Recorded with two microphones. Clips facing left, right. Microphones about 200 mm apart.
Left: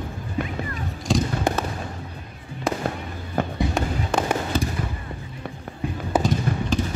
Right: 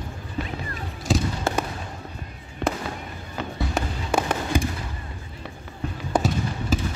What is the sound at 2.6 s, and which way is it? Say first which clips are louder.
Fireworks: even; 65° right (ahead or behind).